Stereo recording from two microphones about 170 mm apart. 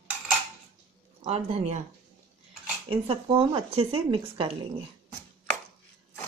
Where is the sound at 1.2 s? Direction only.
40° right (ahead or behind).